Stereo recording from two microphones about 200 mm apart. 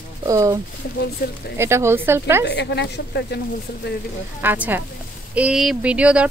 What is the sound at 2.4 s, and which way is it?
Speech, 60° left (ahead or behind).